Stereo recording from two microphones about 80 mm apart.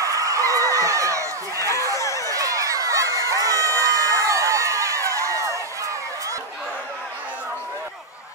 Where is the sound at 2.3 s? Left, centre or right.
Right.